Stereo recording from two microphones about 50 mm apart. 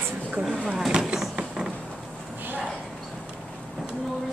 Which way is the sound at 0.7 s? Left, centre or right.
Centre.